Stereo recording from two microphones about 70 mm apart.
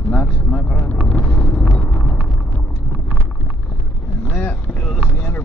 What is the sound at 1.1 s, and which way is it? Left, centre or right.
Vehicle, centre.